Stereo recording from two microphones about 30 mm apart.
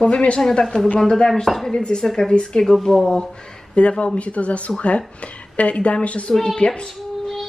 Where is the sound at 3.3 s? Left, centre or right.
Left.